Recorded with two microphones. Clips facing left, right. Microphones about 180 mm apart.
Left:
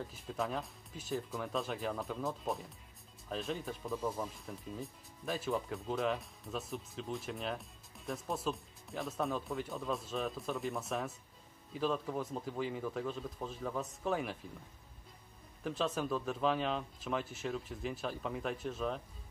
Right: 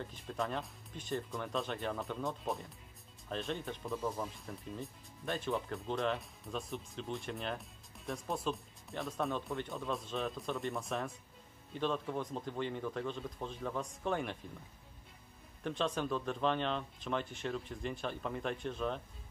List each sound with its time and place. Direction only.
0.0 s speech: 5° left (ahead or behind)
15.6 s speech: 5° left (ahead or behind)